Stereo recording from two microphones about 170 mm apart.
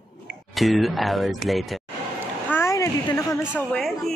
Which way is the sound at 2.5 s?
15° left (ahead or behind).